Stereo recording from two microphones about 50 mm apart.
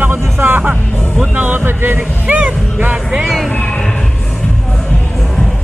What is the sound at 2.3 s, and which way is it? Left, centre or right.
Speech, right.